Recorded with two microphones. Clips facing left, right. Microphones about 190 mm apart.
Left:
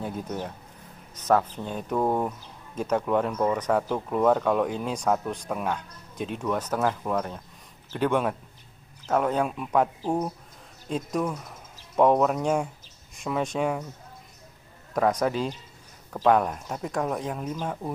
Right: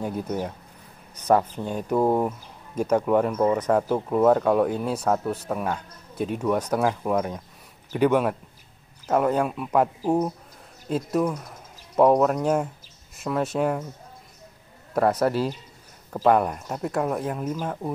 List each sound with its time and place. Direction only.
0.0 s speech: 10° right (ahead or behind)
15.0 s speech: 5° right (ahead or behind)